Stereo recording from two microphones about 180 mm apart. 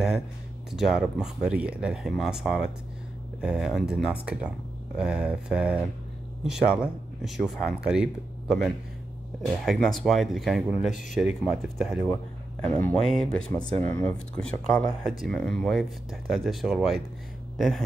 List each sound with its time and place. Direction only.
0.7 s speech: 5° right (ahead or behind)